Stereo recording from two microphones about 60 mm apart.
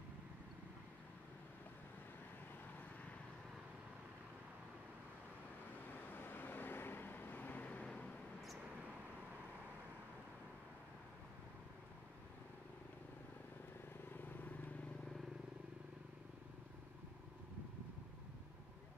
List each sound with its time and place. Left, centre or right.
5.9 s vehicle: left; by 8.1 s centre
14.0 s vehicle: left